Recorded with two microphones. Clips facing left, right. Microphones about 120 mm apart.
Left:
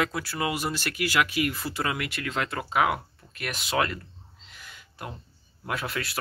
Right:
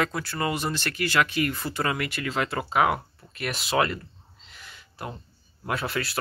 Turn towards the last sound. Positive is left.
turn(degrees=0)  # may be behind; listen again after turning